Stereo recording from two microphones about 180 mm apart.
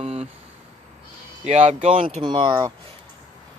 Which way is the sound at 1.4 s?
40° right (ahead or behind).